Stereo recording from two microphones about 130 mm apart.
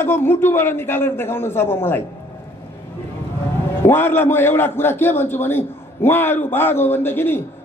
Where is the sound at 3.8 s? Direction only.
15° left (ahead or behind).